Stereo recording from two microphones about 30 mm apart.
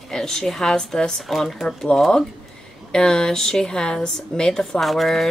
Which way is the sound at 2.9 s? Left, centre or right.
Left.